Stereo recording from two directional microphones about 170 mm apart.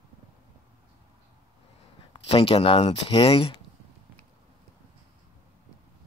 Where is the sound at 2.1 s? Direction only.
35° left (ahead or behind).